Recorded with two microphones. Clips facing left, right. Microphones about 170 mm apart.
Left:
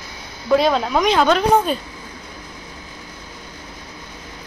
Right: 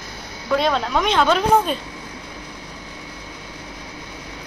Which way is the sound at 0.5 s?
5° left (ahead or behind).